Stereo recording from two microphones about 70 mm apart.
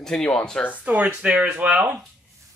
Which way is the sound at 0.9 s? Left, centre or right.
Centre.